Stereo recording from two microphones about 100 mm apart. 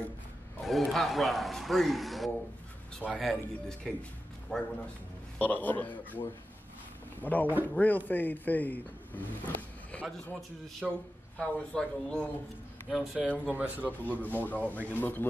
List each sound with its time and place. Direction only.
0.7 s a man's voice: centre (ahead or behind); by 10.0 s 15° left (ahead or behind)
10.8 s a man's voice: 5° right (ahead or behind)
11.3 s a man's voice: 10° left (ahead or behind)
13.3 s speech: 15° right (ahead or behind)
14.0 s speech: 15° left (ahead or behind)